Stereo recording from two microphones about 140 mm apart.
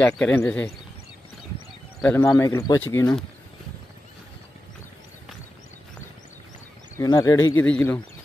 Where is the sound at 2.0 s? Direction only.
10° left (ahead or behind).